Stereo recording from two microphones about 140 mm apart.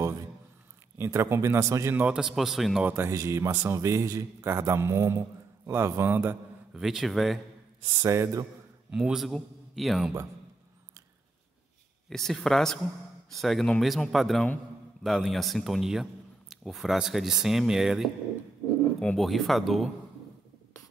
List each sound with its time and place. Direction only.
0.9 s a man's voice: 20° right (ahead or behind); by 2.8 s centre (ahead or behind)
2.8 s a man's voice: 15° right (ahead or behind)
6.7 s a man's voice: centre (ahead or behind)
8.0 s a man's voice: 20° right (ahead or behind)
8.9 s a man's voice: 5° right (ahead or behind)
12.1 s a man's voice: centre (ahead or behind)